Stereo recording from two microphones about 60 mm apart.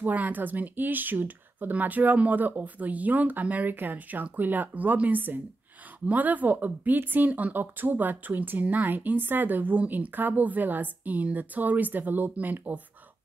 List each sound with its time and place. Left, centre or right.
0.0 s speech: right